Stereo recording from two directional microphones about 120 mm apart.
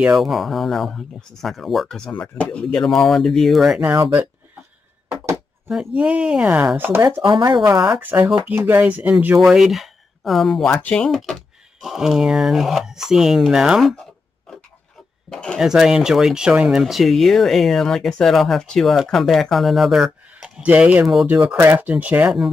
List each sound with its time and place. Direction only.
0.0 s speech: 5° right (ahead or behind)
3.9 s speech: 25° right (ahead or behind)
5.7 s speech: 5° right (ahead or behind)
7.2 s speech: 40° right (ahead or behind)
7.8 s speech: 5° right (ahead or behind)
9.4 s speech: 5° right (ahead or behind)
15.2 s speech: 5° left (ahead or behind)
15.6 s speech: 5° right (ahead or behind)
21.5 s speech: 20° right (ahead or behind)